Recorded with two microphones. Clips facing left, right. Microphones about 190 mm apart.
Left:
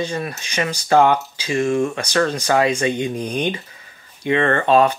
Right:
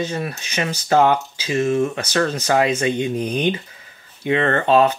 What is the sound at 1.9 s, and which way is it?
Speech, 15° left (ahead or behind).